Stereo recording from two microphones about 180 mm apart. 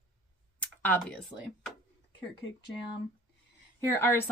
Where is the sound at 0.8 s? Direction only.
5° left (ahead or behind).